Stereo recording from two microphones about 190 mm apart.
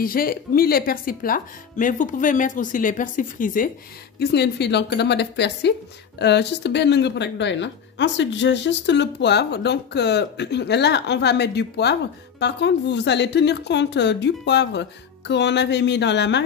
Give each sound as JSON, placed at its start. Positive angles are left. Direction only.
{"t": 0.0, "sound": "speech", "side_deg": 50}
{"t": 4.2, "sound": "speech", "side_deg": 60}